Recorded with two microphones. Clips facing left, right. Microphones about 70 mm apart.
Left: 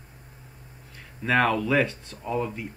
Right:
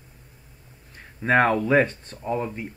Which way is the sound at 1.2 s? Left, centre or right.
Right.